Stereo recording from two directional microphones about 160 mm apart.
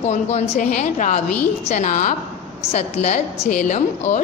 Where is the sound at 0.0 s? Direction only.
45° left (ahead or behind).